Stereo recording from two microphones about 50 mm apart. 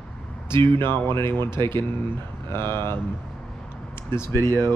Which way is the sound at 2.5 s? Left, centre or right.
Left.